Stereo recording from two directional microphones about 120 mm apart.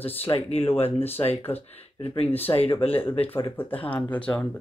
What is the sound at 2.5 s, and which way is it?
Speech, 55° left (ahead or behind).